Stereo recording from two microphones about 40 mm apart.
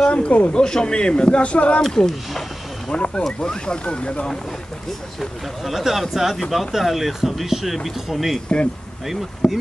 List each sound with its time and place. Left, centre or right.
0.0 s speech: left
0.6 s a man's voice: centre
1.8 s speech: centre
2.9 s a man's voice: left
5.2 s speech: centre
9.4 s a man's voice: centre